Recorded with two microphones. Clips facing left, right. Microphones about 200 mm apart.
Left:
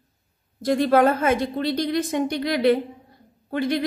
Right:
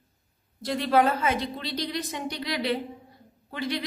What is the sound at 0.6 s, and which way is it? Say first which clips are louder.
A woman's voice: left 5 dB; 50° left (ahead or behind).